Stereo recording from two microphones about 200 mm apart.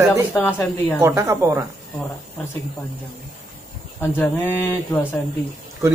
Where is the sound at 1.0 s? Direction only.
15° right (ahead or behind).